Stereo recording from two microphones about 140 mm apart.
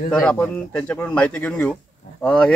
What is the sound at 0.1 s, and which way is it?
A man's voice, 5° left (ahead or behind).